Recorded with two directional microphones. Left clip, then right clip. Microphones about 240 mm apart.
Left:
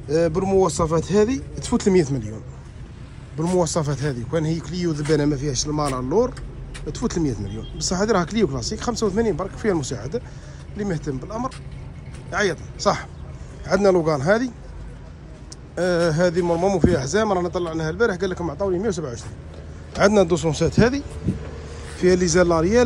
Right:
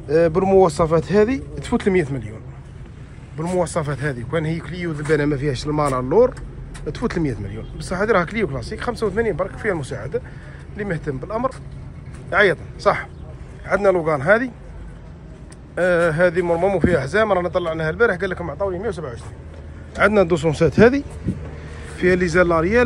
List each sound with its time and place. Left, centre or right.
0.1 s a man's voice: centre
3.3 s a man's voice: left
15.7 s speech: centre
20.0 s a man's voice: centre
22.0 s a man's voice: centre